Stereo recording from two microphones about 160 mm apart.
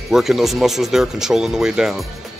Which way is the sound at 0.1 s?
Centre (ahead or behind).